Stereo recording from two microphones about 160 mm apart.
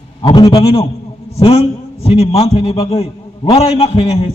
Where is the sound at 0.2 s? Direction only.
30° left (ahead or behind).